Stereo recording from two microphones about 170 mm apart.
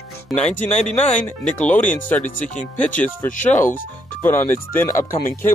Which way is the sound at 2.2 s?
45° left (ahead or behind).